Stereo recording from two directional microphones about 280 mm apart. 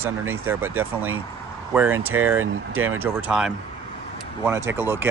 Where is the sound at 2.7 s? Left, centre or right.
Right.